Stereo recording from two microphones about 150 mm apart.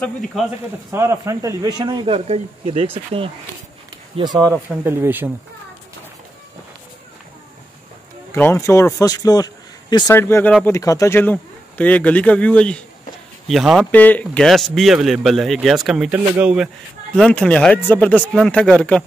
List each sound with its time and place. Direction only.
0.0 s a man's voice: centre (ahead or behind)
0.9 s speech: 15° right (ahead or behind); by 3.3 s 40° right (ahead or behind)
4.2 s speech: 25° right (ahead or behind)
4.6 s speech: 15° right (ahead or behind)
8.4 s a man's voice: 15° left (ahead or behind)
10.1 s a man's voice: 15° left (ahead or behind); by 13.8 s centre (ahead or behind)
13.9 s a man's voice: 10° left (ahead or behind); by 17.2 s 5° right (ahead or behind)
17.2 s a man's voice: 5° left (ahead or behind)